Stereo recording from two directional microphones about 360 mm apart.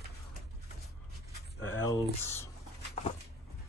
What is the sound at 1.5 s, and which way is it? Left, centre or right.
Speech, left.